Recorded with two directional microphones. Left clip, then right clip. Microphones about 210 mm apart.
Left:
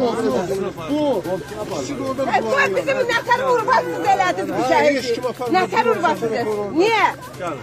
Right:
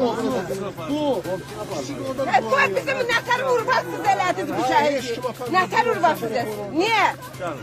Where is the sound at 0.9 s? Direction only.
15° right (ahead or behind).